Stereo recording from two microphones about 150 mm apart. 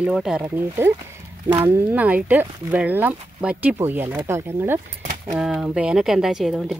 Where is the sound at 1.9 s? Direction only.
10° right (ahead or behind).